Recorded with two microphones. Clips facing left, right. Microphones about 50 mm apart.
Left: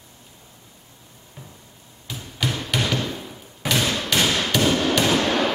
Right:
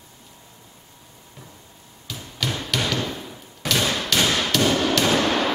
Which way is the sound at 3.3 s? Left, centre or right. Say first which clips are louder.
Left 1 dB; centre.